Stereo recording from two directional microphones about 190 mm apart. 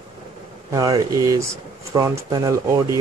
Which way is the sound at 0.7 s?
20° right (ahead or behind).